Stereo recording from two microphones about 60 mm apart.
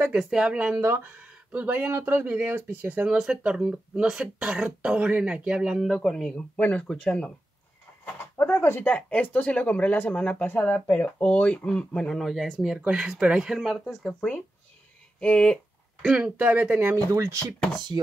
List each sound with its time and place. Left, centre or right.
0.2 s speech: centre
0.5 s speech: right
1.2 s a sound: right
2.0 s speech: right
3.1 s speech: centre
5.9 s speech: centre
6.6 s speech: left
8.0 s a sound: left
8.8 s speech: left; by 12.3 s centre
12.3 s speech: centre
14.0 s speech: centre
16.2 s speech: right
16.9 s speech: right